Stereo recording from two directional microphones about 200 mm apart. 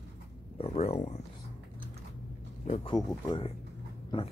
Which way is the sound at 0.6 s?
30° left (ahead or behind).